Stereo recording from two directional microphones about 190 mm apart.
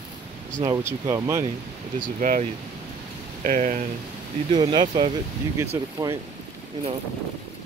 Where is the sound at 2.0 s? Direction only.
45° right (ahead or behind).